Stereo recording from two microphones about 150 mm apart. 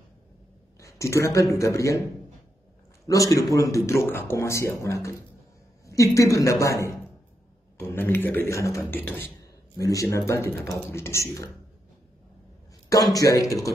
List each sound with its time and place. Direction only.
0.7 s a man's voice: 20° left (ahead or behind)
3.1 s a man's voice: 20° left (ahead or behind)
13.1 s speech: 25° left (ahead or behind)